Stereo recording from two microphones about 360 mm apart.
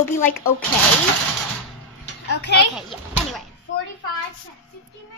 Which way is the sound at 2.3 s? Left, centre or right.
Left.